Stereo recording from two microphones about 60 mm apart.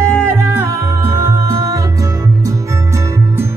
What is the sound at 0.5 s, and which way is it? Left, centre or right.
Music, right.